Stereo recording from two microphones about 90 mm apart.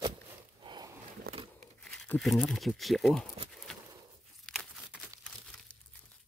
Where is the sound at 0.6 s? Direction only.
55° right (ahead or behind).